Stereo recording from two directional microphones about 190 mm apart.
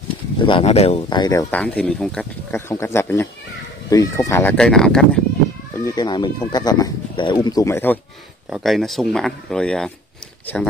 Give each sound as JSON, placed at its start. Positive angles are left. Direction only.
{"t": 0.4, "sound": "speech", "side_deg": 25}
{"t": 1.5, "sound": "speech", "side_deg": 5}
{"t": 5.9, "sound": "speech", "side_deg": 20}
{"t": 8.5, "sound": "speech", "side_deg": 0}